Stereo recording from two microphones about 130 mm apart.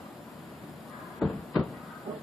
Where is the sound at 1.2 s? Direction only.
Centre (ahead or behind).